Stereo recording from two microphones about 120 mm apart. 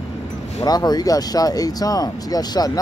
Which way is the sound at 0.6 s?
35° left (ahead or behind).